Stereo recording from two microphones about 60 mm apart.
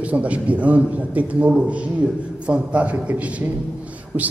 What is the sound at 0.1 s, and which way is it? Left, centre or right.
A man's voice, right.